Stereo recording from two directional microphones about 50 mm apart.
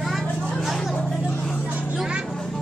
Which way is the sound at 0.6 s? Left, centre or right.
Centre.